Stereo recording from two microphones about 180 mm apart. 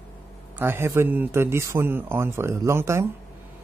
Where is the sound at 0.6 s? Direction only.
15° right (ahead or behind).